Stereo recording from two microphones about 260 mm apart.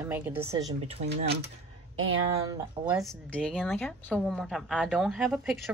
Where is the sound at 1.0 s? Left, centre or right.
Right.